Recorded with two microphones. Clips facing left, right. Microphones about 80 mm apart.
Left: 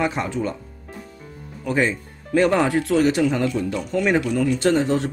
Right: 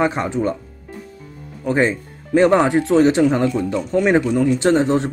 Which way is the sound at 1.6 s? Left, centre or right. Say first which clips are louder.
Right 4 dB; right.